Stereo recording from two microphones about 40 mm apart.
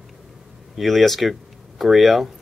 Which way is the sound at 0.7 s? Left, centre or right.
Centre.